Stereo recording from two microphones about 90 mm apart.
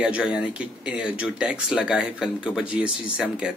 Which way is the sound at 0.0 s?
10° right (ahead or behind).